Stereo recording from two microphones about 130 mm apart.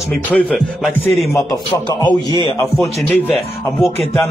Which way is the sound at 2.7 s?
Centre (ahead or behind).